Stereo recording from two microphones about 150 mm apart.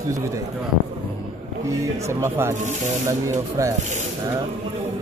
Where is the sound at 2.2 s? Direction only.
15° right (ahead or behind).